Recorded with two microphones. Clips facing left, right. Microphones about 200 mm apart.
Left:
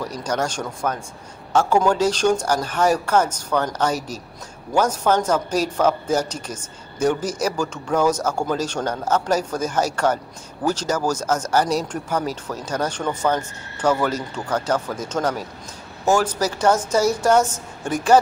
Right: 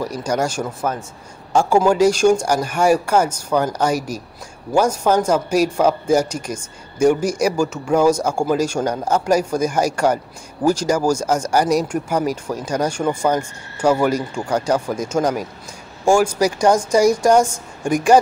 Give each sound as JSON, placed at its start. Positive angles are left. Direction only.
{"t": 0.0, "sound": "a man's voice", "side_deg": -10}